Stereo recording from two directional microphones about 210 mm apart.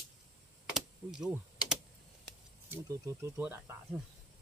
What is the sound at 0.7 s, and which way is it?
Typing, centre (ahead or behind).